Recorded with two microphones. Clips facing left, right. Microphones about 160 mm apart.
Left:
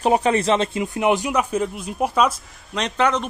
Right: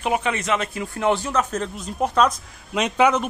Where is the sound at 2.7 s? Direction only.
10° right (ahead or behind).